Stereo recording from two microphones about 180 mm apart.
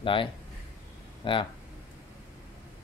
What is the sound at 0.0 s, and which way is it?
Speech, 30° left (ahead or behind).